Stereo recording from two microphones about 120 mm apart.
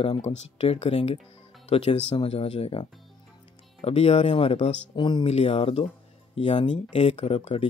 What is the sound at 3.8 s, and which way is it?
Speech, 55° left (ahead or behind).